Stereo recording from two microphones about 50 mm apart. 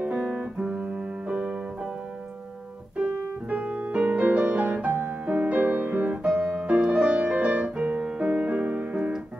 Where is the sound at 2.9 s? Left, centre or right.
Right.